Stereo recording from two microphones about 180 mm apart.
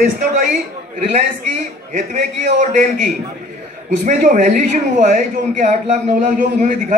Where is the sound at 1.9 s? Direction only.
45° right (ahead or behind).